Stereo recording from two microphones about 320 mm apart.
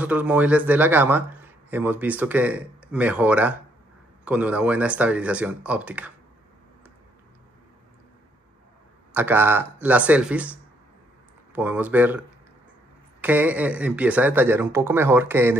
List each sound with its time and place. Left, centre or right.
0.0 s speech: centre
9.1 s speech: centre
13.2 s speech: centre